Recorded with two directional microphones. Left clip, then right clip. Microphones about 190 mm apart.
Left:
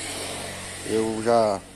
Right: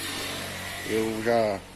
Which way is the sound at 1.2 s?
10° left (ahead or behind).